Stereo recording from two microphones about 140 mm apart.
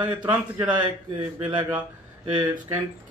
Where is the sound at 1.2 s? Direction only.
30° right (ahead or behind).